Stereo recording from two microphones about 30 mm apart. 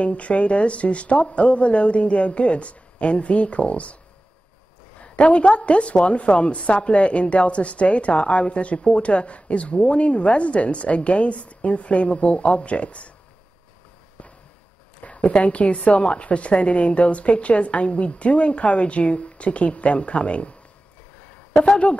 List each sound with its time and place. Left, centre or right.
0.0 s a woman's voice: left
5.0 s a woman's voice: left
15.0 s a woman's voice: left